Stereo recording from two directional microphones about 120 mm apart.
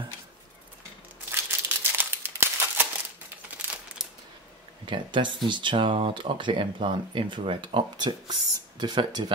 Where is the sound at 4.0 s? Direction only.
5° right (ahead or behind).